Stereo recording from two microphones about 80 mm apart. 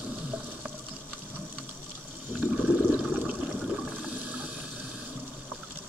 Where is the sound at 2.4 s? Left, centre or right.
Centre.